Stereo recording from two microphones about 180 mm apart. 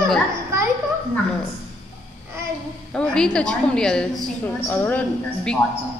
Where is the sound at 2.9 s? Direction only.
5° left (ahead or behind).